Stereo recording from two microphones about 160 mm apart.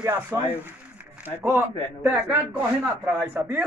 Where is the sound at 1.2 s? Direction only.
15° right (ahead or behind).